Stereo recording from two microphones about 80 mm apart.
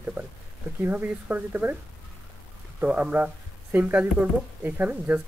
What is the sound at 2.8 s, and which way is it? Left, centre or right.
Speech, centre.